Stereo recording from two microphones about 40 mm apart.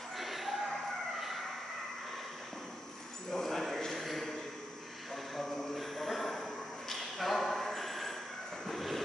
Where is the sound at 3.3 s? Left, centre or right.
Centre.